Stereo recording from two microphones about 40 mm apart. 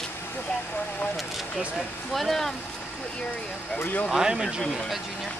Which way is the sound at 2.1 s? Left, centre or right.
Centre.